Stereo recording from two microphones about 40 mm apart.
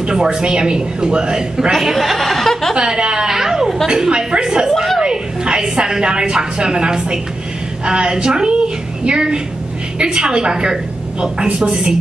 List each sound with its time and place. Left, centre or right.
0.0 s a woman's voice: right
1.7 s speech: centre
2.7 s a woman's voice: right
4.1 s a woman's voice: right
4.6 s a sound: centre
5.0 s a woman's voice: right